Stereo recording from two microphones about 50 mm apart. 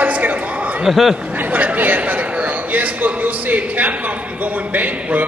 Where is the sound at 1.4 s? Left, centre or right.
Right.